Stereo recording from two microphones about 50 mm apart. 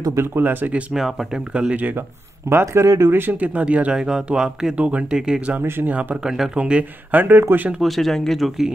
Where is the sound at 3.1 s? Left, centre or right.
Right.